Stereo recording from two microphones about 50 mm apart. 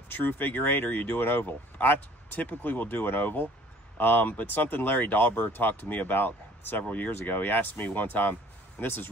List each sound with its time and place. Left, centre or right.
0.1 s speech: left